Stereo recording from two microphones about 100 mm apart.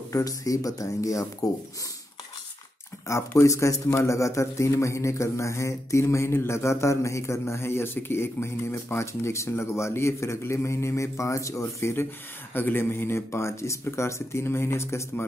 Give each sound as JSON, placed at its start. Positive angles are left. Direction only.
{"t": 0.1, "sound": "speech", "side_deg": 35}
{"t": 3.1, "sound": "speech", "side_deg": 30}